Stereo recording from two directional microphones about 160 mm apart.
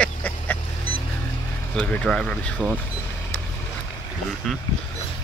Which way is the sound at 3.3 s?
15° left (ahead or behind).